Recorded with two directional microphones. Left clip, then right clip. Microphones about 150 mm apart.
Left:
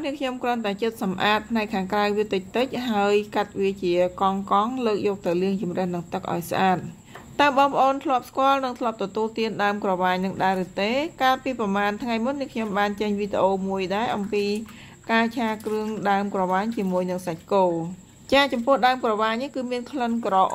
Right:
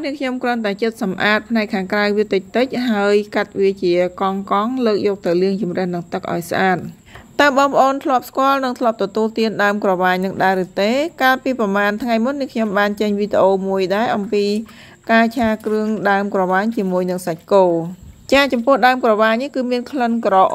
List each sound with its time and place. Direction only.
0.0 s speech: 35° right (ahead or behind)